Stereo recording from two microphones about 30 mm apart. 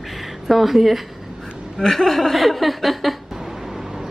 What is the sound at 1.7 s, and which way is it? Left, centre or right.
A woman's voice, centre.